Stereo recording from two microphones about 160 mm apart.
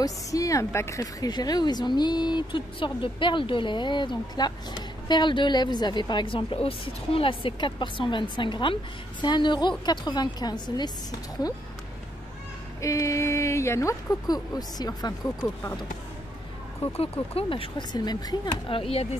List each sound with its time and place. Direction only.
0.0 s speech: 20° left (ahead or behind)
12.8 s speech: 20° left (ahead or behind)
16.9 s speech: 35° left (ahead or behind)